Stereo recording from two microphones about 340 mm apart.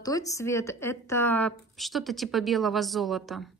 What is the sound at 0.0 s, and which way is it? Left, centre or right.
A woman's voice, centre.